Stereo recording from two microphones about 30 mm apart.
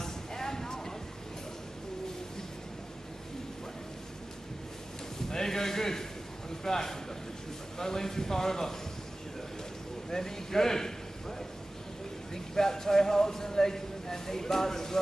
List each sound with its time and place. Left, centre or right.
0.0 s a sound: centre
5.3 s a man's voice: centre
10.0 s a man's voice: centre
12.5 s speech: centre